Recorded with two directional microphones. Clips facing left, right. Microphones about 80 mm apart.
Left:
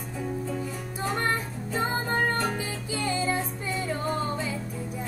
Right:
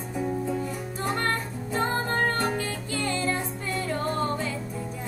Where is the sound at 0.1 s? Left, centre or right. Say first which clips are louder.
Right 4 dB; centre.